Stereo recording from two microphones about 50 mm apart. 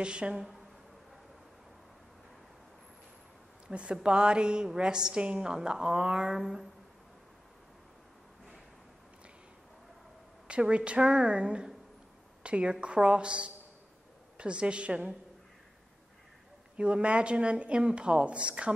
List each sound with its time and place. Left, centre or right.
0.0 s speech: centre
3.6 s a woman's voice: centre
10.5 s a woman's voice: right
16.7 s speech: right